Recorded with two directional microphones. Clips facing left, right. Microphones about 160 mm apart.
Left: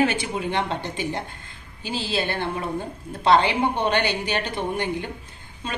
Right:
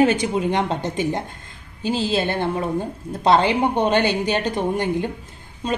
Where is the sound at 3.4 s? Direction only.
40° right (ahead or behind).